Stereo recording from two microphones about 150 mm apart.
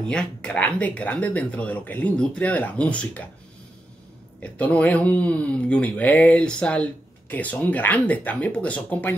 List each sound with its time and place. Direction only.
0.1 s speech: 5° left (ahead or behind)
4.4 s speech: 10° left (ahead or behind)